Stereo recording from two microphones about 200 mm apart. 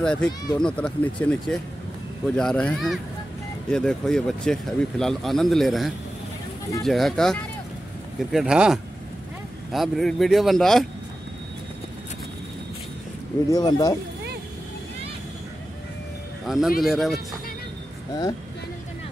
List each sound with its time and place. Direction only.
0.0 s speech: 5° left (ahead or behind)
13.5 s speech: 20° left (ahead or behind)
16.4 s speech: centre (ahead or behind)